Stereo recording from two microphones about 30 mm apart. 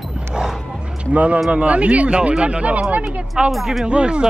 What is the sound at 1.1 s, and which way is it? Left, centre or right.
Speech, right.